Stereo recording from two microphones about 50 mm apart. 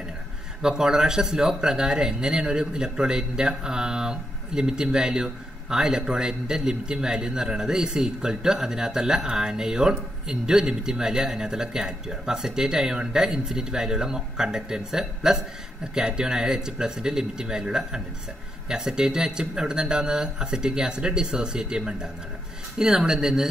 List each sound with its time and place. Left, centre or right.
0.6 s speech: centre